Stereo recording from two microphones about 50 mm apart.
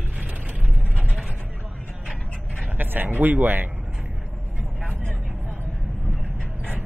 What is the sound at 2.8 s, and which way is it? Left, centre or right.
Speech, right.